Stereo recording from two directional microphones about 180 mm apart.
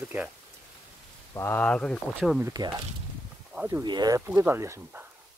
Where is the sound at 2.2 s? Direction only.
5° right (ahead or behind).